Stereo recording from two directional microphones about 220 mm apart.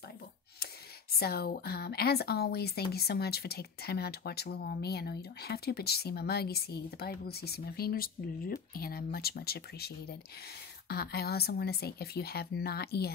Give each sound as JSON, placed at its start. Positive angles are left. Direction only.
{"t": 1.1, "sound": "speech", "side_deg": 45}